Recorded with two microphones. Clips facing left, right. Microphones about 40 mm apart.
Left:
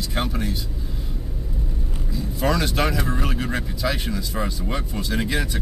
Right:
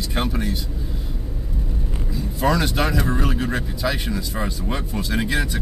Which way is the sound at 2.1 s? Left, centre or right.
Centre.